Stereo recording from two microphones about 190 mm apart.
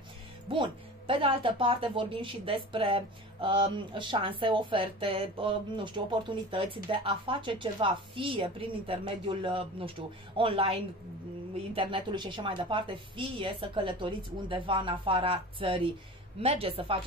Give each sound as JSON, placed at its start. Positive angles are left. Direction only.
{"t": 0.5, "sound": "speech", "side_deg": -25}